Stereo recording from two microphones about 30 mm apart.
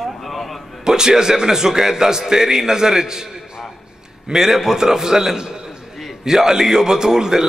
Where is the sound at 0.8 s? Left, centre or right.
Right.